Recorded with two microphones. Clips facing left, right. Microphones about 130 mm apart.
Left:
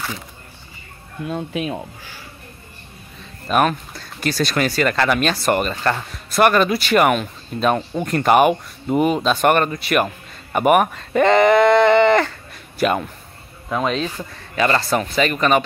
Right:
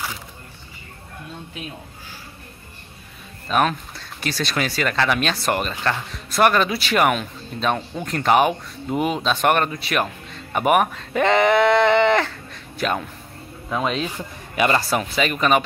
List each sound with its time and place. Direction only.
1.2 s speech: 90° left
3.4 s speech: 5° left (ahead or behind)